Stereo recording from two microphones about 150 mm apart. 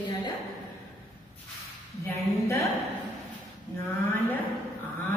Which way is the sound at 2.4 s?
20° left (ahead or behind).